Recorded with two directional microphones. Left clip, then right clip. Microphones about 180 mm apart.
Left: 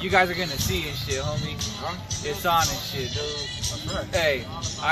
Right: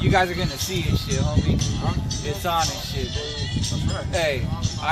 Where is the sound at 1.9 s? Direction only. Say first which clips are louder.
Right 1 dB; 15° right (ahead or behind).